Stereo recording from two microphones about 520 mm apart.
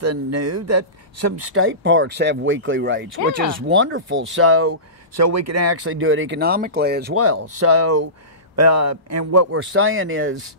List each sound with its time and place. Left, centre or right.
0.0 s speech: right